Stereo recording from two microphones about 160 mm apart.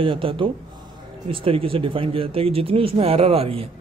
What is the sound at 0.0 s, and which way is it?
Speech, 35° right (ahead or behind).